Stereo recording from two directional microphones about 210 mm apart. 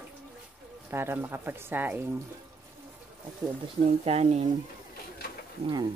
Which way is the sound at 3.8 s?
30° right (ahead or behind).